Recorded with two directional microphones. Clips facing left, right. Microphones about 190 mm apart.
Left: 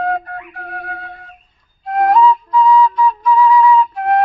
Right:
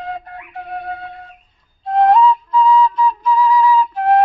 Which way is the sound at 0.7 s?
25° right (ahead or behind).